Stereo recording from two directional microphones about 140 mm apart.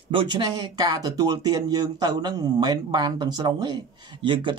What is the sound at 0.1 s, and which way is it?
Speech, 35° right (ahead or behind).